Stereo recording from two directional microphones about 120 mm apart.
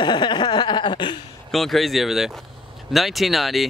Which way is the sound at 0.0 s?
40° left (ahead or behind).